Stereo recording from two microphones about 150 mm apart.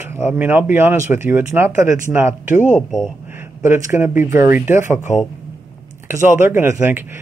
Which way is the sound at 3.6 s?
15° right (ahead or behind).